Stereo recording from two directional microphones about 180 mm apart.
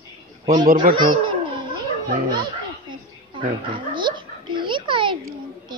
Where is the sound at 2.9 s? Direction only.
25° right (ahead or behind).